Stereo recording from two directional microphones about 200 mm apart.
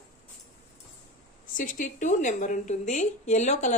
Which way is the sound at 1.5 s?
40° left (ahead or behind).